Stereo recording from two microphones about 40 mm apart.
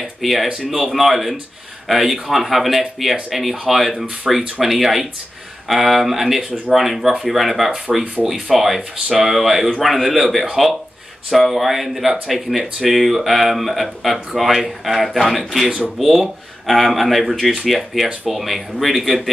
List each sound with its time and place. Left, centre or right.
0.2 s speech: centre
4.0 s speech: right
4.6 s speech: centre